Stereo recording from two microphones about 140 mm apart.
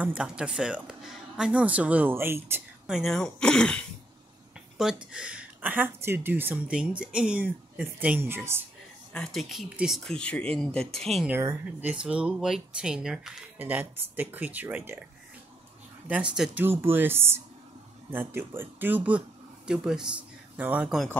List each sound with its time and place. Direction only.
0.0 s speech: 5° right (ahead or behind)
2.9 s speech: centre (ahead or behind)
5.1 s speech: 10° right (ahead or behind)
9.1 s speech: centre (ahead or behind)
11.2 s speech: 15° right (ahead or behind)
16.1 s speech: 5° right (ahead or behind)